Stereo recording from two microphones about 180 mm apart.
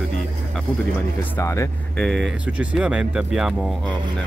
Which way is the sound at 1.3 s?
15° left (ahead or behind).